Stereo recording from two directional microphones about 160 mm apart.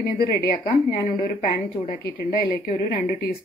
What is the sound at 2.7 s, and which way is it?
Speech, 40° left (ahead or behind).